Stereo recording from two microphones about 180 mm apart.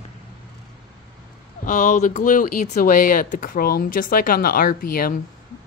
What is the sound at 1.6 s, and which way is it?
Speech, 45° left (ahead or behind).